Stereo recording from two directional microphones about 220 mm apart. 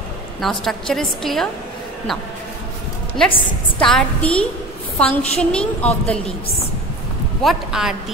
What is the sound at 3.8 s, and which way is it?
A woman's voice, 5° left (ahead or behind).